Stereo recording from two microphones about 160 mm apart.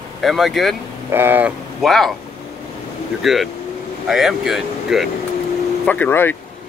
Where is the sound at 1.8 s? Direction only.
Centre (ahead or behind).